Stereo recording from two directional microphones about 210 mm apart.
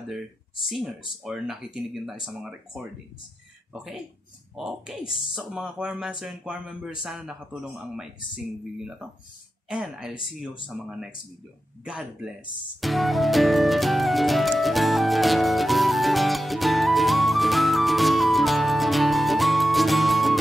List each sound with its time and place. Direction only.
0.7 s speech: centre (ahead or behind)
12.8 s music: centre (ahead or behind)